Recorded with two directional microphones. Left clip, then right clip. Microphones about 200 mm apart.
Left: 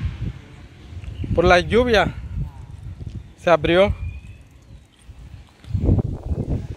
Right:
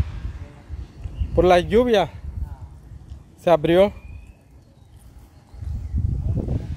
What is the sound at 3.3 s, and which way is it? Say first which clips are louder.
Speech: even; 15° right (ahead or behind).